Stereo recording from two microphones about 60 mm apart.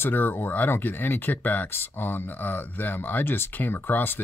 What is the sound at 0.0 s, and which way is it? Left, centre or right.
Speech, left.